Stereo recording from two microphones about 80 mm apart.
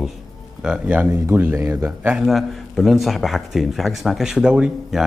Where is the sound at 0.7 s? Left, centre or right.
Centre.